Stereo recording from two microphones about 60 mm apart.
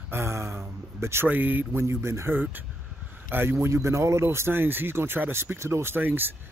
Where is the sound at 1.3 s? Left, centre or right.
Right.